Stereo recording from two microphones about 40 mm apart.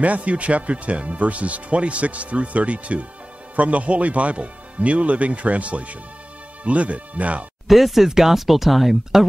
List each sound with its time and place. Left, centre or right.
0.0 s speech: right
7.6 s speech: centre